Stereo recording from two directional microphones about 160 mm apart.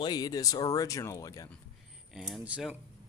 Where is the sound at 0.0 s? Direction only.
25° left (ahead or behind).